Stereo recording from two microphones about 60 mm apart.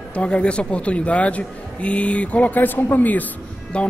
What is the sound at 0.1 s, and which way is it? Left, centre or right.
A man's voice, centre.